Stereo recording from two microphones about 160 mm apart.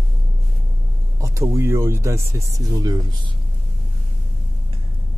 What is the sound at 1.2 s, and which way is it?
Speech, 20° right (ahead or behind).